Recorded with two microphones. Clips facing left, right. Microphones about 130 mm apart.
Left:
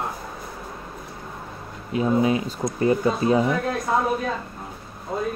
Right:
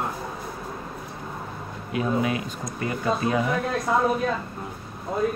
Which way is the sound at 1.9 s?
25° left (ahead or behind).